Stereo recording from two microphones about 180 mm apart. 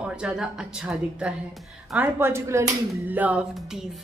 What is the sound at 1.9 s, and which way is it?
Music, 10° right (ahead or behind).